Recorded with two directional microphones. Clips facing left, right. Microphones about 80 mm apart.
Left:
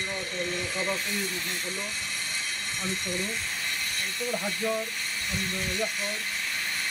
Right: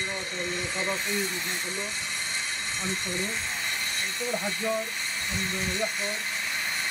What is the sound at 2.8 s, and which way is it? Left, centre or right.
Speech, right.